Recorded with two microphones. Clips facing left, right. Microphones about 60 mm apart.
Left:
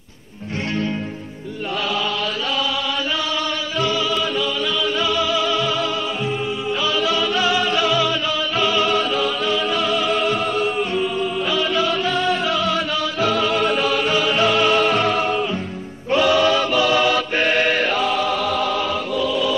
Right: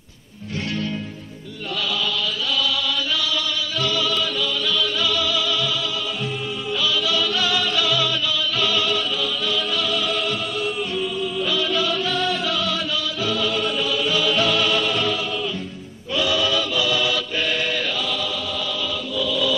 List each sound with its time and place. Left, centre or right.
3.8 s music: left
13.2 s music: left
16.1 s choir: left